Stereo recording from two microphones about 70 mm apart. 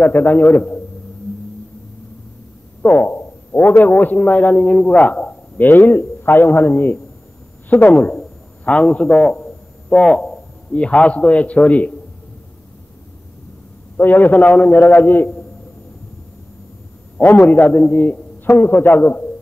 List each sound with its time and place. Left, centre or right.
0.0 s a man's voice: left
2.8 s a sound: left
3.8 s a man's voice: left
7.9 s a man's voice: centre
13.9 s a man's voice: left
17.2 s a man's voice: left